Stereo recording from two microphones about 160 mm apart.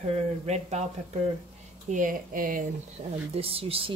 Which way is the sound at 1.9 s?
55° right (ahead or behind).